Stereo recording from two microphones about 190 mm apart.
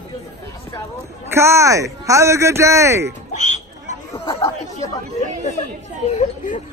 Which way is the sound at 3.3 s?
40° left (ahead or behind).